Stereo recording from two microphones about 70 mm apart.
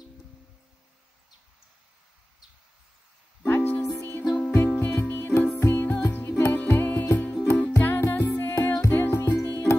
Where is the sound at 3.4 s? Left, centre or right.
Left.